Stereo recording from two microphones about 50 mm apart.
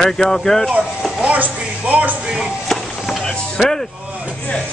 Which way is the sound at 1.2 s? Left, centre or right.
Right.